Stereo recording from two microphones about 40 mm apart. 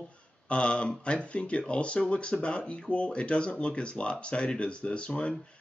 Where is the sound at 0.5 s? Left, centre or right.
Left.